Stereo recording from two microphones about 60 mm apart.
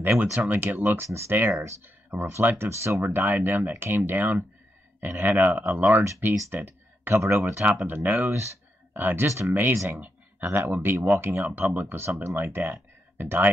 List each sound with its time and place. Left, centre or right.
0.0 s speech: right
1.0 s speech: right
3.0 s speech: right